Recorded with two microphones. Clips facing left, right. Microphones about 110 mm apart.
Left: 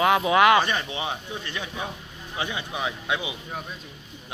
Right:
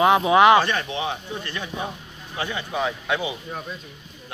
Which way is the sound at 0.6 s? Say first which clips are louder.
Right 2 dB; 10° left (ahead or behind).